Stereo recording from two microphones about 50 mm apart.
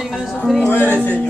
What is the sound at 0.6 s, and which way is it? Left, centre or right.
Music, left.